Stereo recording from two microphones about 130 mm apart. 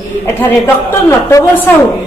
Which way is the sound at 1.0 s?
20° left (ahead or behind).